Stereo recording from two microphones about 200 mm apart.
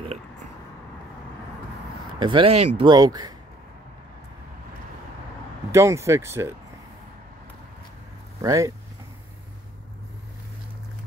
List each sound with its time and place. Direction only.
2.1 s speech: 25° right (ahead or behind)
5.7 s speech: 15° right (ahead or behind)
8.4 s speech: 15° right (ahead or behind)